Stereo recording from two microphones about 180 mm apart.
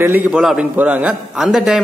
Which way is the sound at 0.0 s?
10° right (ahead or behind).